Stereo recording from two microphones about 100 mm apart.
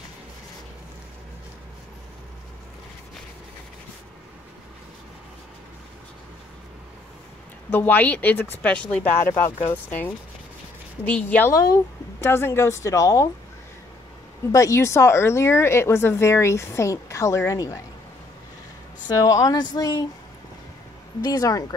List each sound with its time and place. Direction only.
7.7 s speech: 15° left (ahead or behind)
11.5 s speech: 40° left (ahead or behind)
12.2 s speech: 25° left (ahead or behind)
14.5 s speech: 30° left (ahead or behind)
19.0 s speech: 35° left (ahead or behind)
21.2 s speech: 40° left (ahead or behind)